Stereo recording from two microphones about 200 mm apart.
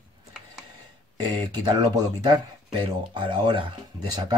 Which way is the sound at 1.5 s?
20° right (ahead or behind).